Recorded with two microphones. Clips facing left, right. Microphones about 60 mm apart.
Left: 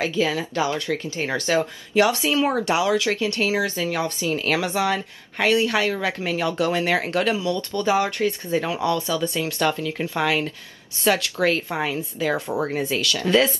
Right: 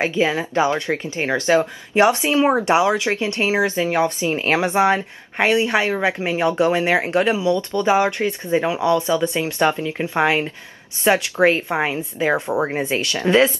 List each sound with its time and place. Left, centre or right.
0.0 s speech: right